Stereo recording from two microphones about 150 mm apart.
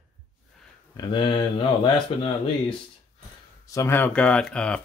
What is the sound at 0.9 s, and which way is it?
Speech, 30° left (ahead or behind).